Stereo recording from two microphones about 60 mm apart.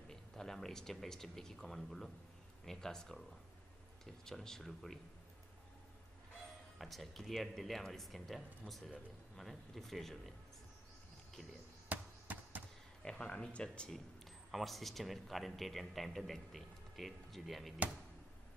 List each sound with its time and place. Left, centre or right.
0.1 s speech: centre
6.8 s speech: centre
11.9 s a sound: right
13.0 s speech: centre
13.9 s speech: centre